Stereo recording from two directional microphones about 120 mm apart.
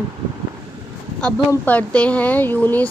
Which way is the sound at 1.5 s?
15° left (ahead or behind).